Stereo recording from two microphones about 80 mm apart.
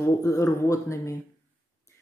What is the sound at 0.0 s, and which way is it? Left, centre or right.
Speech, left.